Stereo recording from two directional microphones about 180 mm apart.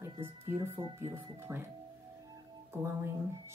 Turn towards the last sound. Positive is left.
turn(degrees=-15)  # may be behind; listen again after turning